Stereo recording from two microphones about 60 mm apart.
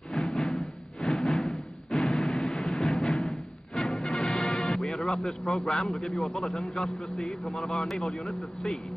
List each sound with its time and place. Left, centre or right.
0.1 s music: centre
4.5 s music: centre
4.9 s a man's voice: centre